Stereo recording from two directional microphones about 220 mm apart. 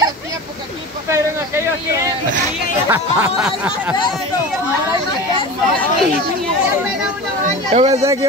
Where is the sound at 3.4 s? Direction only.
5° right (ahead or behind).